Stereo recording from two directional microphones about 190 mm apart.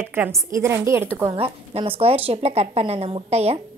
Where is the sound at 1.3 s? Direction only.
30° right (ahead or behind).